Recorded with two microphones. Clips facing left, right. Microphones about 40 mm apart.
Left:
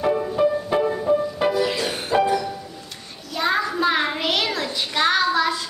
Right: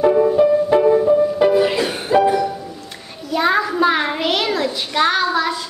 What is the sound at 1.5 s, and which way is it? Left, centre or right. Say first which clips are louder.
Music: right 6 dB; right.